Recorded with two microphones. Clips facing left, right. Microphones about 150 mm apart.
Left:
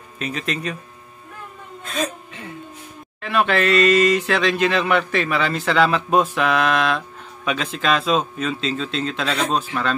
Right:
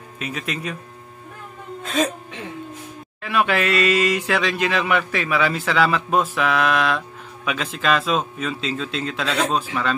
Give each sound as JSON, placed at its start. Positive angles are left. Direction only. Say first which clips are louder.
{"t": 0.2, "sound": "a man's voice", "louder": "left 2 dB", "side_deg": -5}
{"t": 3.2, "sound": "a man's voice", "louder": "left 1 dB", "side_deg": -5}